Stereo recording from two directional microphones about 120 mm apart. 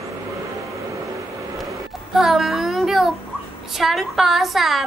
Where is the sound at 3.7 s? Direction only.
Centre (ahead or behind).